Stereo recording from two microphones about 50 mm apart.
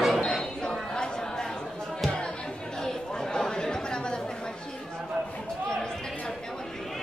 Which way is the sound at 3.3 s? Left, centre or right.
Centre.